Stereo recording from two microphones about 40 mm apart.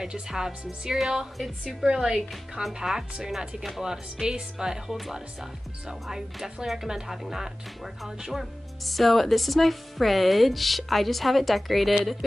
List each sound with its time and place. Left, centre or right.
0.0 s speech: centre